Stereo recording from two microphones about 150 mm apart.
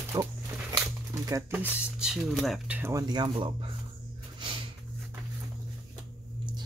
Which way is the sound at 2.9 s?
25° right (ahead or behind).